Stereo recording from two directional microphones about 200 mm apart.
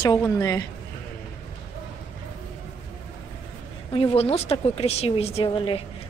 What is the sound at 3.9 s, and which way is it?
A woman's voice, 30° left (ahead or behind).